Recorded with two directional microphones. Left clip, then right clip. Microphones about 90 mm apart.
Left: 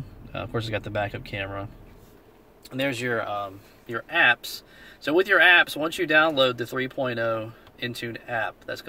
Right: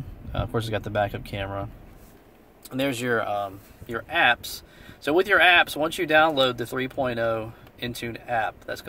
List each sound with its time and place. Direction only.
0.3 s speech: 45° right (ahead or behind)
2.7 s speech: 40° right (ahead or behind)